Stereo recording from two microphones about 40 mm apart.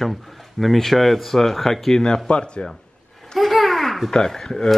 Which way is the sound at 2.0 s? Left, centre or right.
Left.